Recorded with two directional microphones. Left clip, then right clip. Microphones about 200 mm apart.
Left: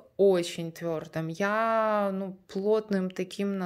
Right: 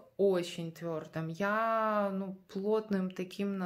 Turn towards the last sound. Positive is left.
turn(degrees=40)  # may be behind; listen again after turning